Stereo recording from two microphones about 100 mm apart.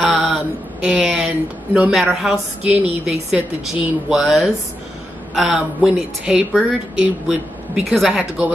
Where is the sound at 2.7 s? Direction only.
90° right.